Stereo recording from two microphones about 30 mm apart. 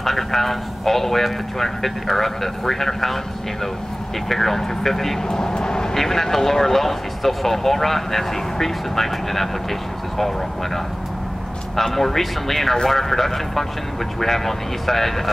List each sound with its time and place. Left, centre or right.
0.0 s speech: centre
4.3 s speech: centre
5.6 s vehicle: left
5.9 s speech: centre
11.7 s speech: centre